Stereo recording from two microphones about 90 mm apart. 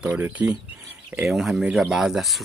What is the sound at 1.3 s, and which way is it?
Speech, 5° right (ahead or behind).